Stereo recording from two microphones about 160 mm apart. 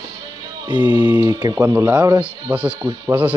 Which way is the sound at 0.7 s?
25° right (ahead or behind).